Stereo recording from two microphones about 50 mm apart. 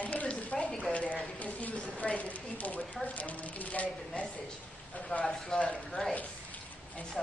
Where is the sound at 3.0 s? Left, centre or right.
Left.